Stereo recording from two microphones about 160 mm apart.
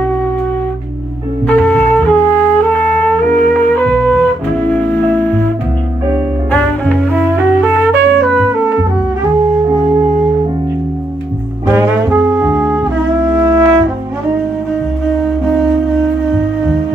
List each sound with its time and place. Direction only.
1.5 s music: 10° left (ahead or behind)
6.5 s music: 10° left (ahead or behind)
7.1 s music: 10° right (ahead or behind)
11.6 s music: 10° right (ahead or behind)